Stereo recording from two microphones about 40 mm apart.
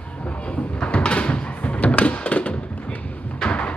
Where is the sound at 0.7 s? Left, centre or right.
Left.